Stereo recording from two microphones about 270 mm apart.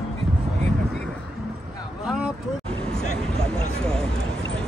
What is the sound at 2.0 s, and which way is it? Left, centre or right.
Vehicle, centre.